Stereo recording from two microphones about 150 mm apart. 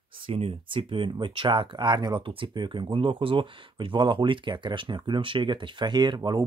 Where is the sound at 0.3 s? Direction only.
40° right (ahead or behind).